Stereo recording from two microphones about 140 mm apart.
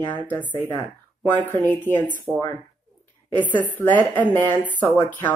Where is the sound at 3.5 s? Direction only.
10° left (ahead or behind).